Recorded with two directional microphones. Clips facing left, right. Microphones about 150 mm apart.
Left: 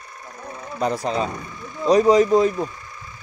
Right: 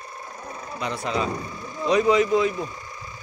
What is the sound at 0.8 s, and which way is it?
Speech, 40° left (ahead or behind).